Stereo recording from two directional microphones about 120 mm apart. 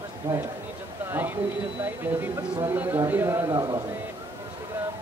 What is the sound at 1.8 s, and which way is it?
Speech, 20° right (ahead or behind).